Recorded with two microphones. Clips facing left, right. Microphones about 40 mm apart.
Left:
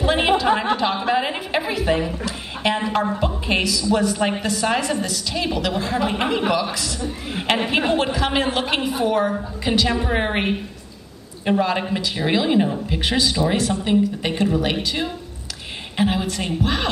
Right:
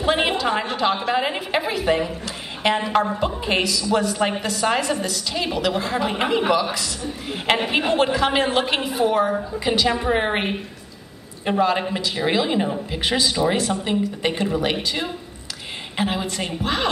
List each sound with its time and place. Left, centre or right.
0.0 s a woman's voice: centre